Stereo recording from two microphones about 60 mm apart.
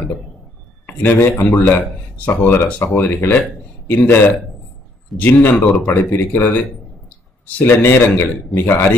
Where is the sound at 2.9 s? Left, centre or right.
Left.